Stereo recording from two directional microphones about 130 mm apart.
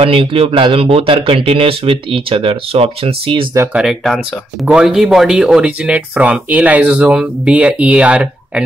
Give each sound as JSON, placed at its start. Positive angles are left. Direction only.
{"t": 0.0, "sound": "speech", "side_deg": -45}
{"t": 3.5, "sound": "speech", "side_deg": -15}
{"t": 3.8, "sound": "speech", "side_deg": 5}
{"t": 4.6, "sound": "speech", "side_deg": -5}